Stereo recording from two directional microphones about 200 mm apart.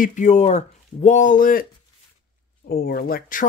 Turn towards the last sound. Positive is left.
turn(degrees=45)  # may be behind; listen again after turning